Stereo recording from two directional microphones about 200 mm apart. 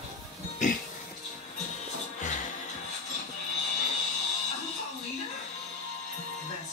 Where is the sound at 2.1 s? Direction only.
40° left (ahead or behind).